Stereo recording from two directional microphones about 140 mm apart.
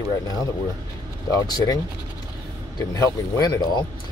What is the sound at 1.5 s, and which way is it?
Speech, 25° left (ahead or behind).